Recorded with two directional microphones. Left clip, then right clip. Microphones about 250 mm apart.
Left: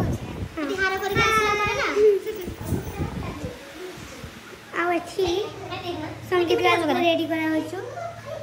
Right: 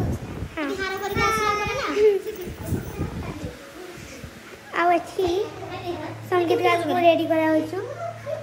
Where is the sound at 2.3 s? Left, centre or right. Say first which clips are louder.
Left 1 dB; centre.